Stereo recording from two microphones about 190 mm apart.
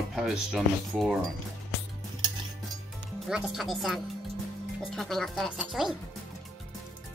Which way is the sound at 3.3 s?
5° right (ahead or behind).